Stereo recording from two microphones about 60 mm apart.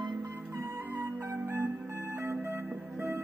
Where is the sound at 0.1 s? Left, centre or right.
Right.